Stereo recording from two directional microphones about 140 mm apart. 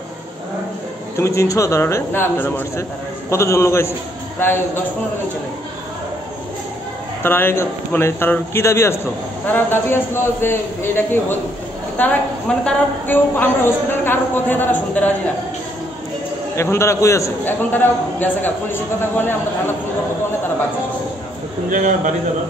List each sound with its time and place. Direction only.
1.1 s speech: 20° left (ahead or behind)
7.2 s a woman's voice: 15° left (ahead or behind)
16.5 s a woman's voice: 20° left (ahead or behind)
21.6 s a man's voice: 65° right (ahead or behind)